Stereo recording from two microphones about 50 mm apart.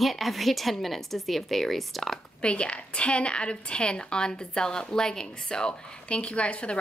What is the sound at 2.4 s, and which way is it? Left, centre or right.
A woman's voice, left.